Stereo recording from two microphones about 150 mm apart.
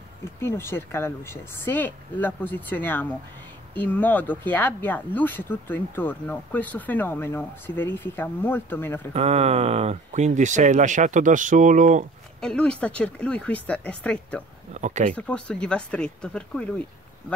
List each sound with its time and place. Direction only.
0.4 s speech: 15° left (ahead or behind)
9.1 s speech: 45° right (ahead or behind)
12.4 s speech: 5° left (ahead or behind)
14.7 s speech: 50° right (ahead or behind)
15.1 s speech: 5° left (ahead or behind)